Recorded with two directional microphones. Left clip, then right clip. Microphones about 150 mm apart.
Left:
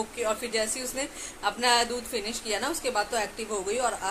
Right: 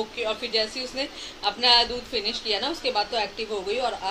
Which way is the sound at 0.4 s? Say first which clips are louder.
Right 3 dB; 65° left (ahead or behind).